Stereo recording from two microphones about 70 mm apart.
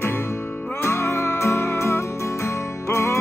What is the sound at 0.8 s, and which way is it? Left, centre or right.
Music, left.